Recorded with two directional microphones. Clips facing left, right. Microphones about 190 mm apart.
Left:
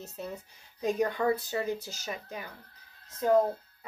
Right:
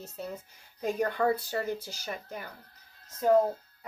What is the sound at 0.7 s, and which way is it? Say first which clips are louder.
Speech: left 1 dB; 15° left (ahead or behind).